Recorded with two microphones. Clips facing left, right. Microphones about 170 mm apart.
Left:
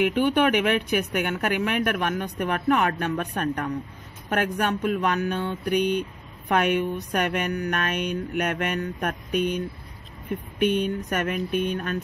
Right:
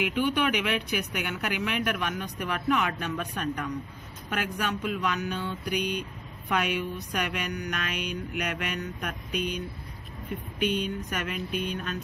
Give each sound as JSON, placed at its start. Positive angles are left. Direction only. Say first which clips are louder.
{"t": 0.0, "sound": "speech", "louder": "left 6 dB", "side_deg": 55}
{"t": 10.6, "sound": "speech", "louder": "left 6 dB", "side_deg": 55}